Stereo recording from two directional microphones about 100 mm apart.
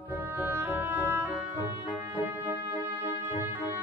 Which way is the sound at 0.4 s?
20° right (ahead or behind).